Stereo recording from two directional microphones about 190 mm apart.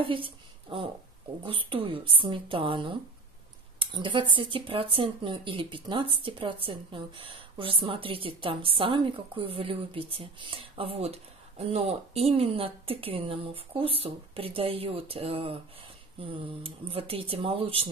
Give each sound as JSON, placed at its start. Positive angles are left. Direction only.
{"t": 0.0, "sound": "a woman's voice", "side_deg": -25}